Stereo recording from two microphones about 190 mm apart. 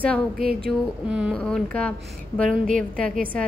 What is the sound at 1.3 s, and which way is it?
Speech, 5° left (ahead or behind).